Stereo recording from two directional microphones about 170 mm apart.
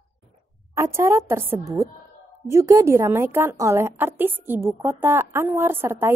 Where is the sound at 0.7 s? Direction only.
15° right (ahead or behind).